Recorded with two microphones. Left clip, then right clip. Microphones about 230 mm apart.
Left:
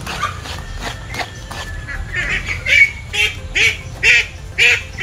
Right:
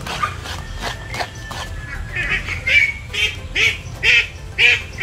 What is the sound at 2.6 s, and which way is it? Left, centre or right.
Quack, centre.